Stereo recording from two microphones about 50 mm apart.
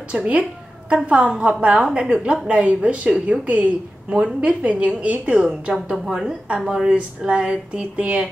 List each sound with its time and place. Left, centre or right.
0.1 s a woman's voice: right
6.0 s a woman's voice: centre; by 8.3 s right